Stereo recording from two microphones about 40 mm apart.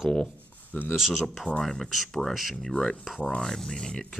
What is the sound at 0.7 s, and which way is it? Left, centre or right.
Speech, left.